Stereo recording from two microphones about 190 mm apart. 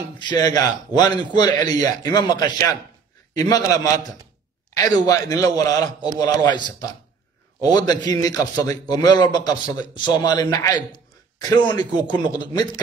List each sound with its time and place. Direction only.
0.2 s a man's voice: 25° left (ahead or behind)
7.7 s a man's voice: 20° left (ahead or behind)